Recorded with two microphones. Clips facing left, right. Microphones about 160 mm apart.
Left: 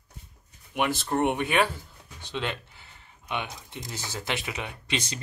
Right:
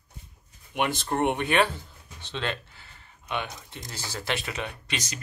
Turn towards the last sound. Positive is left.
turn(degrees=25)  # may be behind; listen again after turning